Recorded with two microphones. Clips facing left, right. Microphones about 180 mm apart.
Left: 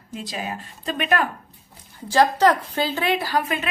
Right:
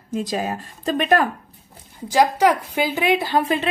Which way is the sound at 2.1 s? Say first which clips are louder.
Right 1 dB; 10° right (ahead or behind).